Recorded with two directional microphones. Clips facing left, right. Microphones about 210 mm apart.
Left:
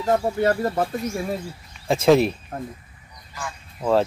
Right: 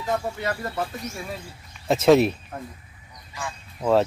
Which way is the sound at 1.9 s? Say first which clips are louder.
Even; centre (ahead or behind).